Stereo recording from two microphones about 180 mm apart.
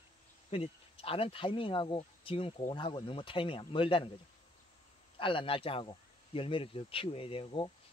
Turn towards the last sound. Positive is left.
turn(degrees=30)  # may be behind; listen again after turning